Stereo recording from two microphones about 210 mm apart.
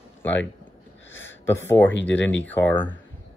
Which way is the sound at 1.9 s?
60° left (ahead or behind).